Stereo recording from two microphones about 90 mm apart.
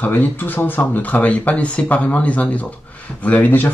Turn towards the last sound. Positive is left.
turn(degrees=20)  # may be behind; listen again after turning